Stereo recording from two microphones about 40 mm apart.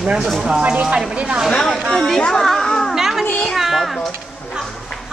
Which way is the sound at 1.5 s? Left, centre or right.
Centre.